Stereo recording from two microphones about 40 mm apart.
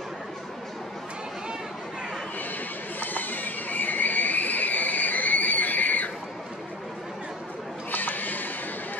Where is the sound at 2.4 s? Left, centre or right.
Left.